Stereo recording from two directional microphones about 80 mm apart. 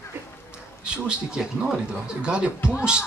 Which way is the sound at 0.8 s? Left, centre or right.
Centre.